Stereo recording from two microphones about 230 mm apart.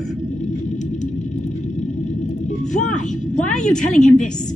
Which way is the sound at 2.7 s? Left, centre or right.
Left.